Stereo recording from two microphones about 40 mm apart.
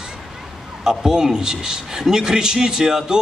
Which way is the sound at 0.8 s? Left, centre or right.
Centre.